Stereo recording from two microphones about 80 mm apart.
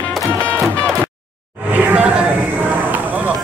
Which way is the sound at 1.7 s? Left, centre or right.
Centre.